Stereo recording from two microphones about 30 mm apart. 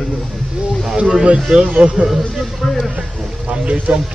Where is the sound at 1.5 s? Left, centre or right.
Right.